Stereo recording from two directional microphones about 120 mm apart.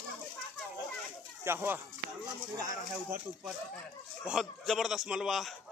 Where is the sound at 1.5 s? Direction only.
15° right (ahead or behind).